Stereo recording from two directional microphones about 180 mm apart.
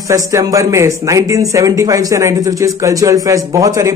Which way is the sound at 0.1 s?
20° right (ahead or behind).